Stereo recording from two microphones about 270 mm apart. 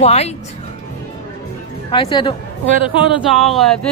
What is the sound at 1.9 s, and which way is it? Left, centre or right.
Speech, centre.